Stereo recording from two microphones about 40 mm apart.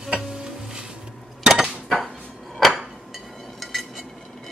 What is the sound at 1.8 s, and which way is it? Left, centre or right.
Dishes, centre.